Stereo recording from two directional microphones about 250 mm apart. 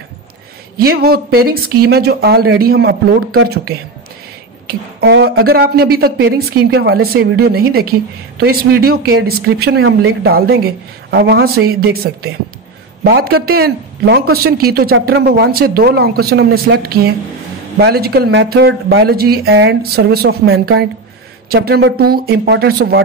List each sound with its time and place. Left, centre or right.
0.7 s speech: right